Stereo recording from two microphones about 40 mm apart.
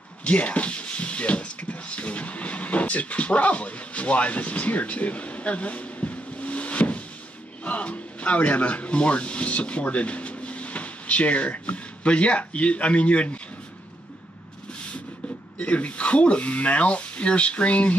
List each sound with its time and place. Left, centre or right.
0.2 s speech: left
15.6 s speech: left